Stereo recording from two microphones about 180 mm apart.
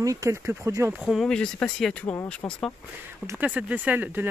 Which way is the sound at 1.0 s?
Centre (ahead or behind).